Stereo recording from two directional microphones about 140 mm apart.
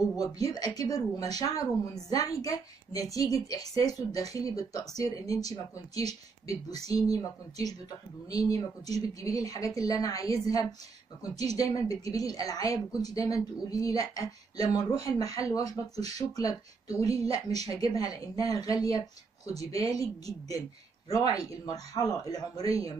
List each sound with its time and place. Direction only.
0.2 s speech: 25° left (ahead or behind)